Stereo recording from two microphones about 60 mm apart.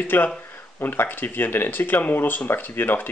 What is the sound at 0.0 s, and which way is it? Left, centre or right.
Speech, left.